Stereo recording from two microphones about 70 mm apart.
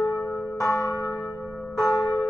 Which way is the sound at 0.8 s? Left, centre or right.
Left.